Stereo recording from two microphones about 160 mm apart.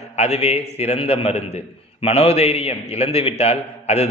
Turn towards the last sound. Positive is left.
turn(degrees=40)  # may be behind; listen again after turning